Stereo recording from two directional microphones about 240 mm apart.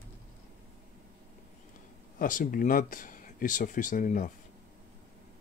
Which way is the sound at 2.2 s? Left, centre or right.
Left.